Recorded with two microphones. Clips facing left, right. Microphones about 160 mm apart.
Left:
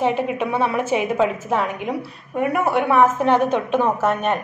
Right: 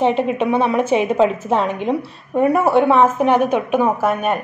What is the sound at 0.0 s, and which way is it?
A woman's voice, 20° right (ahead or behind).